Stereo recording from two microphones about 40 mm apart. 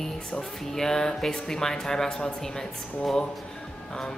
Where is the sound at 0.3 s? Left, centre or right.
Centre.